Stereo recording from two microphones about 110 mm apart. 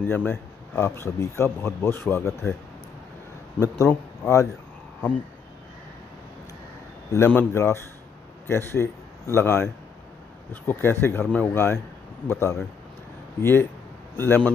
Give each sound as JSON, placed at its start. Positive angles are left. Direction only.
{"t": 0.0, "sound": "a man's voice", "side_deg": 15}
{"t": 3.5, "sound": "a man's voice", "side_deg": 30}
{"t": 7.1, "sound": "a man's voice", "side_deg": 20}